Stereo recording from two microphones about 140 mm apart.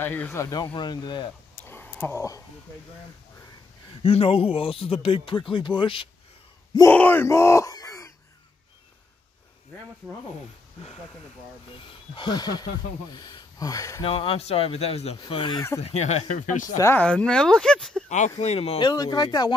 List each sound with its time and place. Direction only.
0.0 s speech: 15° left (ahead or behind); by 1.3 s 30° left (ahead or behind)
1.7 s a sound: 15° left (ahead or behind)
4.0 s speech: 45° left (ahead or behind)
6.9 s speech: 15° left (ahead or behind)
11.9 s speech: 30° left (ahead or behind)
14.0 s speech: 40° left (ahead or behind)
15.5 s speech: 20° left (ahead or behind)
15.8 s speech: 50° left (ahead or behind)
16.7 s speech: 20° left (ahead or behind)
17.0 s speech: 5° left (ahead or behind)
18.0 s speech: 60° left (ahead or behind)
18.4 s speech: 45° left (ahead or behind); by 19.5 s 30° left (ahead or behind)